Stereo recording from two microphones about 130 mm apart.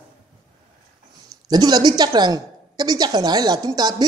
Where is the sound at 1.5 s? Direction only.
30° right (ahead or behind).